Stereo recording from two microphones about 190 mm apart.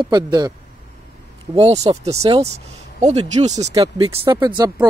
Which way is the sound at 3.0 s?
35° right (ahead or behind).